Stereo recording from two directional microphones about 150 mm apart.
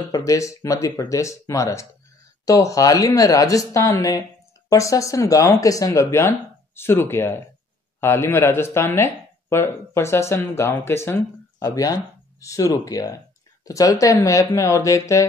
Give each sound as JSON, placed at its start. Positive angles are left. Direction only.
{"t": 0.1, "sound": "speech", "side_deg": 20}